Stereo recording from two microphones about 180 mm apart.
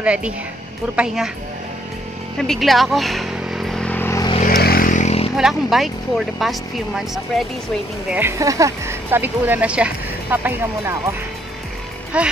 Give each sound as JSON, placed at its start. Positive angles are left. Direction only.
{"t": 0.0, "sound": "speech", "side_deg": -5}
{"t": 2.3, "sound": "vehicle", "side_deg": 0}
{"t": 4.4, "sound": "vehicle", "side_deg": 55}
{"t": 5.3, "sound": "speech", "side_deg": 0}
{"t": 8.1, "sound": "speech", "side_deg": -15}